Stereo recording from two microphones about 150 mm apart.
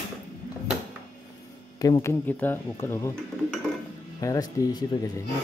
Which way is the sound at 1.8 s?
20° left (ahead or behind).